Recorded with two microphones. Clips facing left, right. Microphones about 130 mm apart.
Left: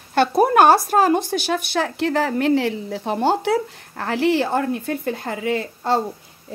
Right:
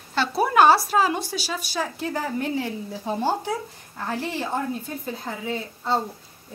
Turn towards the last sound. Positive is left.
turn(degrees=75)  # may be behind; listen again after turning